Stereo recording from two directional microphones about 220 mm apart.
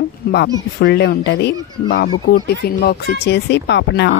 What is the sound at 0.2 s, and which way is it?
Speech, 45° left (ahead or behind).